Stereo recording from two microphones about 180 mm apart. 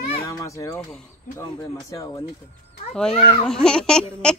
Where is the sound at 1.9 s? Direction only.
20° left (ahead or behind).